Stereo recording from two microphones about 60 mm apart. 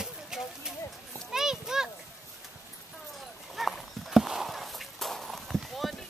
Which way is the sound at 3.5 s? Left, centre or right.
Centre.